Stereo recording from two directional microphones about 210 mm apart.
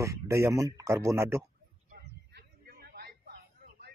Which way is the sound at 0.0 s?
15° right (ahead or behind).